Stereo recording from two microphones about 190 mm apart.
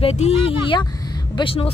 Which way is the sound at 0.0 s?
35° left (ahead or behind).